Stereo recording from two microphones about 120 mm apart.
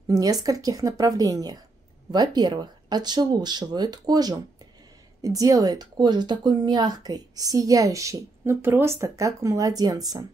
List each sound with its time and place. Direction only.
0.1 s speech: 30° right (ahead or behind)